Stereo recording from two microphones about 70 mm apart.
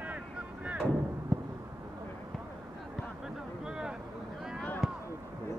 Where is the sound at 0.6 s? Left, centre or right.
Centre.